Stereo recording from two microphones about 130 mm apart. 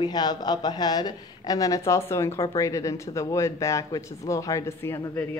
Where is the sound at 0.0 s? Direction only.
30° left (ahead or behind).